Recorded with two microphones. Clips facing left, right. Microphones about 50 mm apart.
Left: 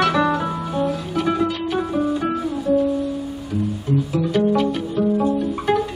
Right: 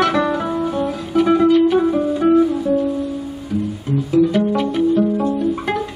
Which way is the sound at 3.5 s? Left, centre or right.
Centre.